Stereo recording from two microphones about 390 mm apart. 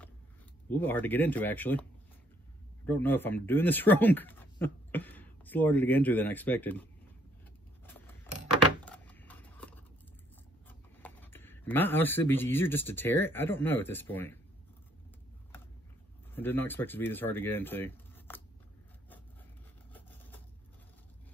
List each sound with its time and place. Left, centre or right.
0.7 s speech: centre
2.9 s speech: centre
7.8 s a sound: centre
10.7 s speech: centre
16.3 s speech: centre